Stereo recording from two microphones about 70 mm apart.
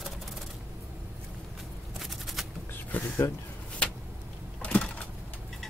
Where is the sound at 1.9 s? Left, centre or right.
Centre.